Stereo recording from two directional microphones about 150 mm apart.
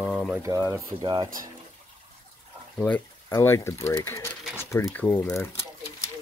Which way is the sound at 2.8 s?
10° left (ahead or behind).